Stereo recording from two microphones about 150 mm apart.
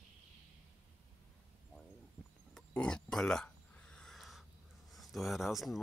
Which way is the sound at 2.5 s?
5° left (ahead or behind).